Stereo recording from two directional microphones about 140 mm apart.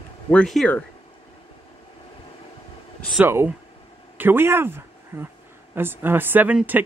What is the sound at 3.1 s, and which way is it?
Speech, 15° right (ahead or behind).